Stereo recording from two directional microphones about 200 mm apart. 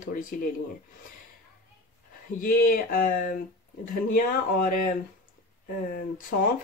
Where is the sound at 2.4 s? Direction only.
45° left (ahead or behind).